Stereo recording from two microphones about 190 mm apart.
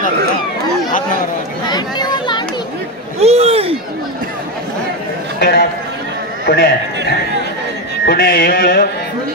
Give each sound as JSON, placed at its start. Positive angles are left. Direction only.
{"t": 1.7, "sound": "chatter", "side_deg": 20}
{"t": 3.2, "sound": "a sound", "side_deg": -35}
{"t": 5.4, "sound": "a man's voice", "side_deg": 55}
{"t": 8.0, "sound": "music", "side_deg": 55}